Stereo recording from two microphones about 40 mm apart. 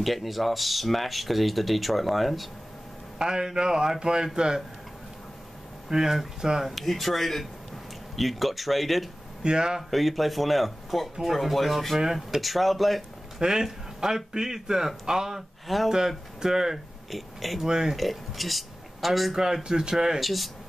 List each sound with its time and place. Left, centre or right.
0.0 s speech: centre
3.2 s speech: centre
5.9 s speech: centre
6.7 s speech: centre
9.4 s speech: right
9.8 s speech: centre
13.4 s speech: centre
15.6 s speech: centre
15.9 s speech: centre
17.1 s speech: centre
17.6 s speech: centre
17.9 s speech: centre
19.3 s speech: centre
20.2 s speech: centre